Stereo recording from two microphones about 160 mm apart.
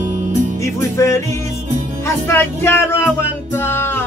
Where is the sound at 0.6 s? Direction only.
20° left (ahead or behind).